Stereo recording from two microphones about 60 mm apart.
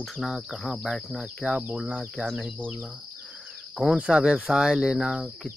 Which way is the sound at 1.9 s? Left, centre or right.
Centre.